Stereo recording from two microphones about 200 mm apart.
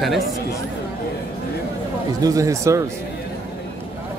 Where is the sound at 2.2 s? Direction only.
15° right (ahead or behind).